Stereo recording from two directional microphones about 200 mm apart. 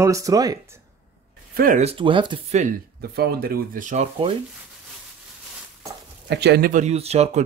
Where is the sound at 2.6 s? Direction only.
50° right (ahead or behind); by 4.3 s 35° right (ahead or behind).